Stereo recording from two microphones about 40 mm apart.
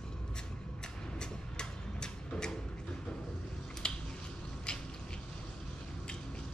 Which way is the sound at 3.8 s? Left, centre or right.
Left.